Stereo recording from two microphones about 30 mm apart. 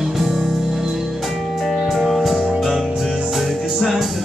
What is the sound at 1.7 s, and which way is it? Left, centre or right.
Music, centre.